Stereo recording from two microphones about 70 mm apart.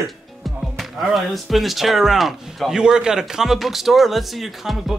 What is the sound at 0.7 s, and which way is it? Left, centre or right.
Speech, centre.